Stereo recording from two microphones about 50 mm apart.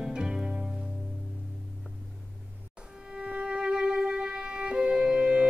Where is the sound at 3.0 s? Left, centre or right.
Right.